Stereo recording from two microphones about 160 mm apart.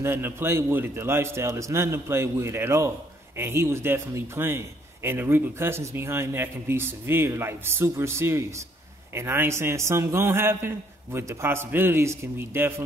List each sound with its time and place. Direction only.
0.0 s a man's voice: 15° right (ahead or behind)